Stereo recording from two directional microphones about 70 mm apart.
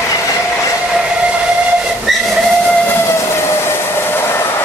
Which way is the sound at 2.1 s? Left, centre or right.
Centre.